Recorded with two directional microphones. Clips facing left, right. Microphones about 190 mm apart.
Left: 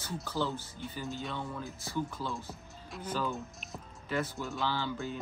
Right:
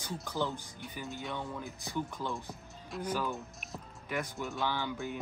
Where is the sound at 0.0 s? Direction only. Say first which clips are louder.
Left 1 dB; 15° right (ahead or behind).